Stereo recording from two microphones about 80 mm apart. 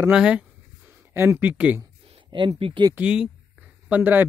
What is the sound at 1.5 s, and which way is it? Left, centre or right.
Speech, centre.